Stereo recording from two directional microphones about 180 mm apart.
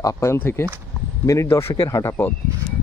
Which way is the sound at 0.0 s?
15° left (ahead or behind).